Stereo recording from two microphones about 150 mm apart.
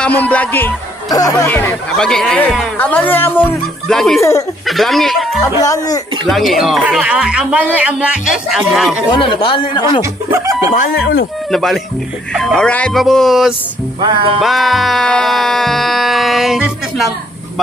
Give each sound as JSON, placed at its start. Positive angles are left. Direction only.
{"t": 0.0, "sound": "speech", "side_deg": 10}
{"t": 1.1, "sound": "speech", "side_deg": 25}
{"t": 1.5, "sound": "speech", "side_deg": 10}
{"t": 3.9, "sound": "a man's voice", "side_deg": 0}
{"t": 4.2, "sound": "speech", "side_deg": 20}
{"t": 4.6, "sound": "a man's voice", "side_deg": 0}
{"t": 5.4, "sound": "speech", "side_deg": 25}
{"t": 6.2, "sound": "a man's voice", "side_deg": 0}
{"t": 9.1, "sound": "speech", "side_deg": 35}
{"t": 10.7, "sound": "speech", "side_deg": 80}
{"t": 11.5, "sound": "a man's voice", "side_deg": 0}
{"t": 14.0, "sound": "music", "side_deg": -35}
{"t": 14.4, "sound": "a man's voice", "side_deg": 0}